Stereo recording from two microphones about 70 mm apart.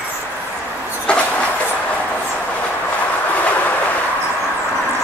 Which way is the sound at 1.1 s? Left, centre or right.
Centre.